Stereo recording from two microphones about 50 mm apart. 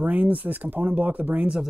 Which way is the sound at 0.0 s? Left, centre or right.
Right.